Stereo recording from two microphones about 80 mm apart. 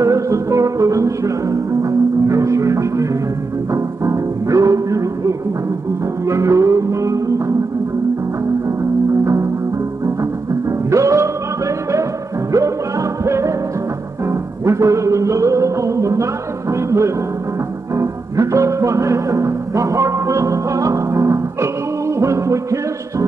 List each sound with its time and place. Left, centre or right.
0.0 s music: right
9.2 s music: right
10.9 s music: right
13.2 s music: right